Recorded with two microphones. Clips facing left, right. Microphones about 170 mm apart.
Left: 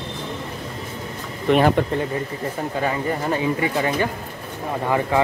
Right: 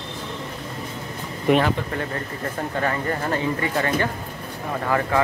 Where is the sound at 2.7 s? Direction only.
10° left (ahead or behind).